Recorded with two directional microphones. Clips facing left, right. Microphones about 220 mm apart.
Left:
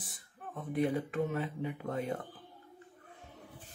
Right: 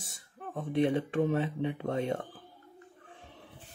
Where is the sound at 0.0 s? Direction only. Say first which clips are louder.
Right 4 dB; 25° right (ahead or behind).